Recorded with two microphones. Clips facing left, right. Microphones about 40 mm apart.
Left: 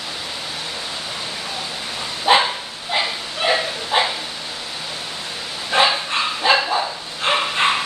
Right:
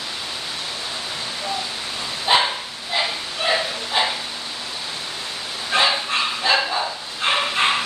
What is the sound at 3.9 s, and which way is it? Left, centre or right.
Dog, left.